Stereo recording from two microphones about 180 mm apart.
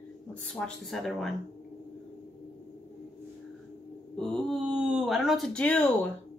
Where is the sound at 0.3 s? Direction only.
5° left (ahead or behind).